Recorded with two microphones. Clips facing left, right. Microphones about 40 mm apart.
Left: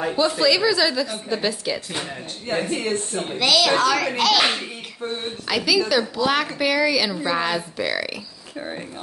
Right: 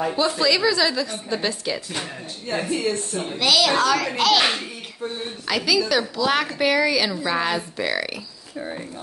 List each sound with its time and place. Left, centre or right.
0.1 s a woman's voice: centre
2.4 s a woman's voice: centre
3.3 s a woman's voice: centre